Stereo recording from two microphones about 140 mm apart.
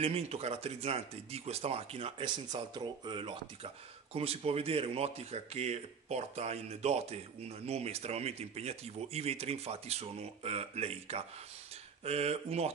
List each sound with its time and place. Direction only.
0.0 s speech: 45° right (ahead or behind)
2.5 s speech: 30° right (ahead or behind); by 12.7 s 50° right (ahead or behind)